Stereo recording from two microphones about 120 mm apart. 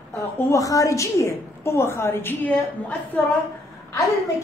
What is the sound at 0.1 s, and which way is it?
A woman's voice, 25° left (ahead or behind).